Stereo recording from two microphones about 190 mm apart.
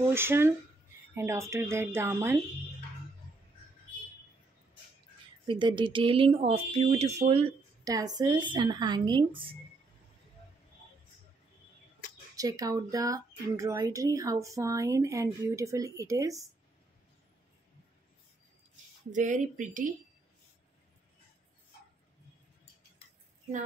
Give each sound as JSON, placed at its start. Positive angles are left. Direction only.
{"t": 0.1, "sound": "speech", "side_deg": -10}
{"t": 5.5, "sound": "speech", "side_deg": -25}
{"t": 7.8, "sound": "speech", "side_deg": -20}
{"t": 12.4, "sound": "speech", "side_deg": -20}
{"t": 19.1, "sound": "speech", "side_deg": -40}